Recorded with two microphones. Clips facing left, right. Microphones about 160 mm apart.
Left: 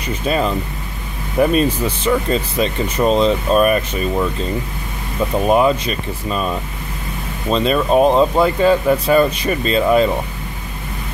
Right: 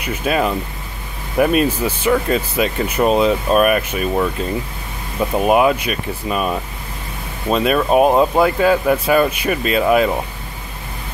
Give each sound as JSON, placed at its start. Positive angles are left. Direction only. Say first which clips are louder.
{"t": 0.0, "sound": "speech", "louder": "even", "side_deg": -10}
{"t": 5.4, "sound": "speech", "louder": "even", "side_deg": -10}